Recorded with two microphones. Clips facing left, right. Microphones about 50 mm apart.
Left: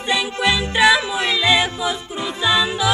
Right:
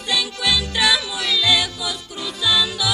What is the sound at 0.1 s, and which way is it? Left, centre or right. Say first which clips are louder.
Music: left 3 dB; left.